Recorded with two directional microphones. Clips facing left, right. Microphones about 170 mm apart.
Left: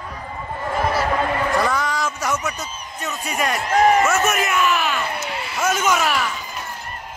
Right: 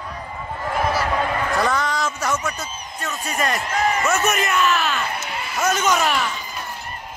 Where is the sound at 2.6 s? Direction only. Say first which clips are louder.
Even; 15° left (ahead or behind).